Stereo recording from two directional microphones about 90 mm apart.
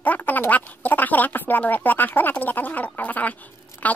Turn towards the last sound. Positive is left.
turn(degrees=15)  # may be behind; listen again after turning